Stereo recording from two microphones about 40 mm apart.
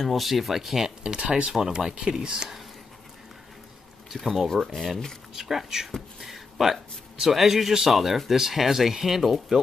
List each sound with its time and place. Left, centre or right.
0.0 s speech: centre
1.0 s speech: right
4.1 s speech: centre
4.6 s speech: centre
5.3 s speech: centre